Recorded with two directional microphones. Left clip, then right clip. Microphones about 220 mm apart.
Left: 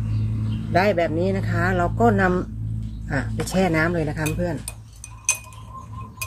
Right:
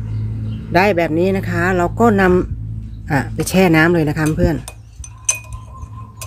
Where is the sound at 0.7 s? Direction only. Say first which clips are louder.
Right 5 dB; 35° right (ahead or behind).